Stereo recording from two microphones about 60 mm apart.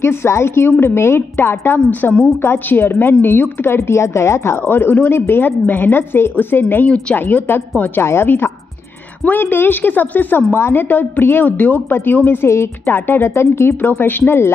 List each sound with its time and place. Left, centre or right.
0.0 s a woman's voice: left
4.6 s a woman's voice: left
8.0 s a woman's voice: left
13.7 s a woman's voice: left